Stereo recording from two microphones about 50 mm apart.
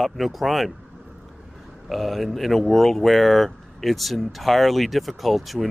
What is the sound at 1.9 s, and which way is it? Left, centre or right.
Speech, centre.